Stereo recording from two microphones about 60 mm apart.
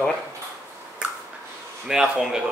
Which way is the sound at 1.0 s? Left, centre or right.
Centre.